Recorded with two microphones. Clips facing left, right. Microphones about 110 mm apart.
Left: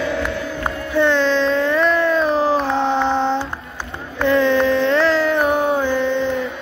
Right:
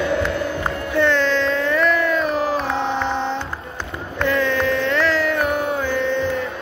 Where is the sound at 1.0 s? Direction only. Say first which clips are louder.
Left 2 dB; 20° left (ahead or behind).